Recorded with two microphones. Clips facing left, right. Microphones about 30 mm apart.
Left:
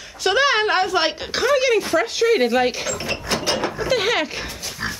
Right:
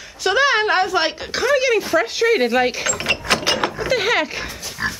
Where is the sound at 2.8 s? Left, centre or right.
Right.